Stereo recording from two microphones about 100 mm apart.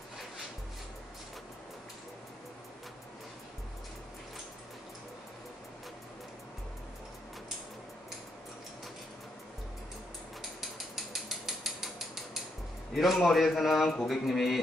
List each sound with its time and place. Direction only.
10.6 s mechanisms: centre (ahead or behind)
12.9 s a man's voice: centre (ahead or behind)